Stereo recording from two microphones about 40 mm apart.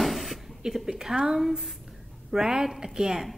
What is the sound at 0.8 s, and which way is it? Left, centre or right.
A woman's voice, centre.